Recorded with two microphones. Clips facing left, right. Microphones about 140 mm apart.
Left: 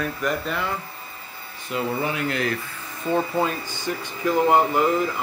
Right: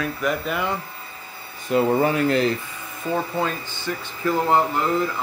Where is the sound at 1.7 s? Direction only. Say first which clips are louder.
Right 7 dB; 40° right (ahead or behind).